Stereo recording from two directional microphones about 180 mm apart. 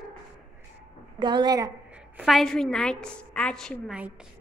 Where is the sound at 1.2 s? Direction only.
25° right (ahead or behind).